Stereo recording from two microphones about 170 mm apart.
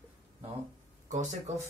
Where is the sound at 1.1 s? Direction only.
45° right (ahead or behind).